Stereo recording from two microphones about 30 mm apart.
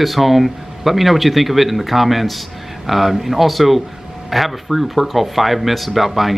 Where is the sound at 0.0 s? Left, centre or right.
Centre.